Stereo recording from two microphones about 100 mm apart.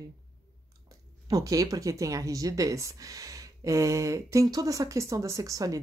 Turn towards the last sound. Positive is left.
turn(degrees=-35)  # may be behind; listen again after turning